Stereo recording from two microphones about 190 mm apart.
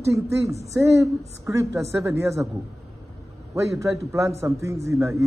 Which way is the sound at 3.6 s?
15° right (ahead or behind).